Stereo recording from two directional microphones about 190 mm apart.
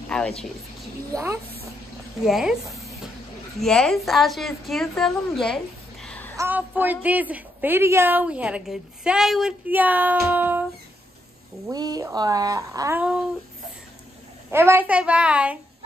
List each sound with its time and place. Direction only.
0.1 s speech: 5° left (ahead or behind)
1.1 s a woman's voice: 15° right (ahead or behind)
2.2 s speech: centre (ahead or behind)
3.5 s a woman's voice: 5° left (ahead or behind)
6.3 s a woman's voice: 10° right (ahead or behind)
11.6 s speech: 20° right (ahead or behind)
14.5 s a woman's voice: 15° right (ahead or behind)